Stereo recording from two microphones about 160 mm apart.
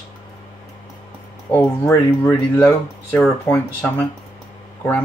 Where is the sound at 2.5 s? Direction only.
15° left (ahead or behind).